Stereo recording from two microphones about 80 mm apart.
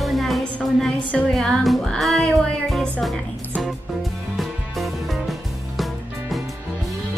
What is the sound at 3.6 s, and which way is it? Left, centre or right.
Music, centre.